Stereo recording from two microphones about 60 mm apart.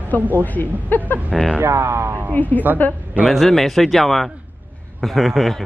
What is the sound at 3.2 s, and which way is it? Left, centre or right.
Speech, centre.